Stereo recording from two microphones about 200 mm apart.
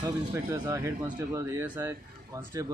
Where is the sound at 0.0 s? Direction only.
15° right (ahead or behind).